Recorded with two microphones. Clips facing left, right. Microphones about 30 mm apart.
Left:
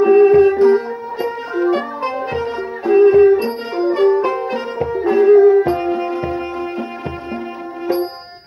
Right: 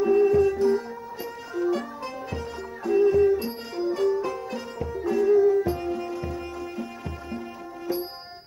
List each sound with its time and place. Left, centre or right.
0.0 s music: left